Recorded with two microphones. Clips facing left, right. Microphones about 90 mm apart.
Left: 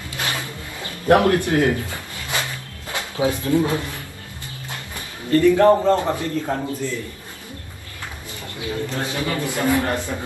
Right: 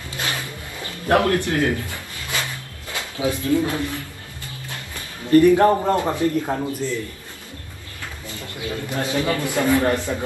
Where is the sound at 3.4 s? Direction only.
20° left (ahead or behind).